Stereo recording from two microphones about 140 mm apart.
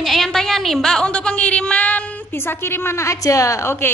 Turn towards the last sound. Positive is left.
turn(degrees=20)  # may be behind; listen again after turning